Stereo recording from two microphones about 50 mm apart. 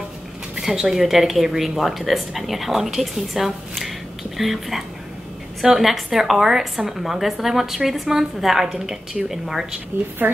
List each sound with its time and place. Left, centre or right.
0.6 s a woman's voice: centre
9.9 s a woman's voice: right